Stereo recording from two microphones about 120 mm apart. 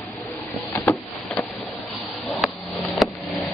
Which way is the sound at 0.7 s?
20° left (ahead or behind).